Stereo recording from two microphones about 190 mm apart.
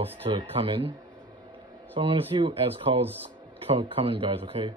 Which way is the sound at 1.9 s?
25° right (ahead or behind).